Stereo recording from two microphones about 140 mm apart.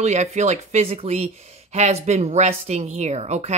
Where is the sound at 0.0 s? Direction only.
55° right (ahead or behind).